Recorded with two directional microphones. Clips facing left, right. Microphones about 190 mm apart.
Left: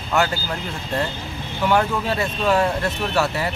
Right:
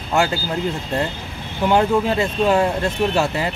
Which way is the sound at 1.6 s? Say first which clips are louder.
Right 4 dB; 20° right (ahead or behind).